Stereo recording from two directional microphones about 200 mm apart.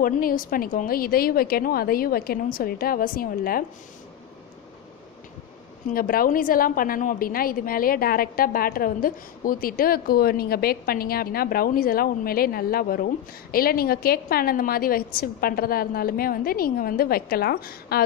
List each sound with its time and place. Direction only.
0.0 s a woman's voice: 45° left (ahead or behind)
5.9 s a woman's voice: 45° left (ahead or behind)